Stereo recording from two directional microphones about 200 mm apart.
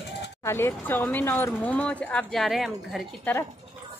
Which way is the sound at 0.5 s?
10° left (ahead or behind).